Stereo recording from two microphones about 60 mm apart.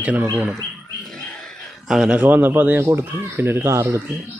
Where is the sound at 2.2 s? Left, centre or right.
Right.